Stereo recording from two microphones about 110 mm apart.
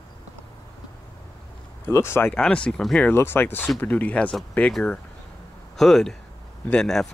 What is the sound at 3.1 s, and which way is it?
Speech, 20° left (ahead or behind).